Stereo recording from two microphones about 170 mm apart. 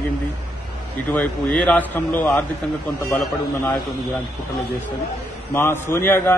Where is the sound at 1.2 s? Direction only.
5° left (ahead or behind).